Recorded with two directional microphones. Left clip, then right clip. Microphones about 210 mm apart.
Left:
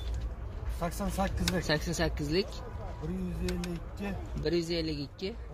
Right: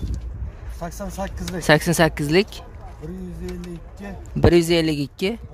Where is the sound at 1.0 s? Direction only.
30° right (ahead or behind).